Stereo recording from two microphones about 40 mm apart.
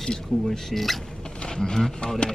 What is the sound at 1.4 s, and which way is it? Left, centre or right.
Speech, centre.